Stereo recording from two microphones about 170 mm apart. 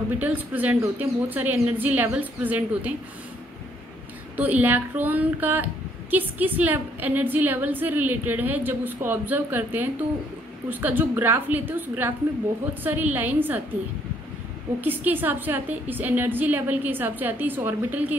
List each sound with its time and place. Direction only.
0.2 s speech: 10° right (ahead or behind)
4.4 s speech: 10° right (ahead or behind)
14.8 s speech: 10° right (ahead or behind)